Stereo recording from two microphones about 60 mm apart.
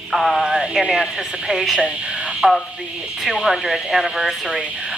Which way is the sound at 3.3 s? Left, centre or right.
Centre.